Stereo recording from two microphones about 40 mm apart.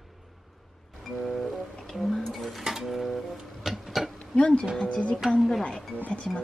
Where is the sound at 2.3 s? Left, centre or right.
Centre.